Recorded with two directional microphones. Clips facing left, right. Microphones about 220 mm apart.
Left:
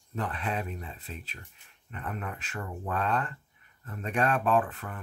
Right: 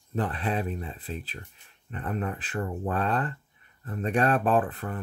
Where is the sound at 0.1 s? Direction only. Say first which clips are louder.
Right 4 dB; 35° right (ahead or behind).